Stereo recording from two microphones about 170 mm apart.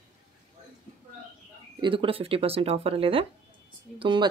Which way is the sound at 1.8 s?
30° right (ahead or behind).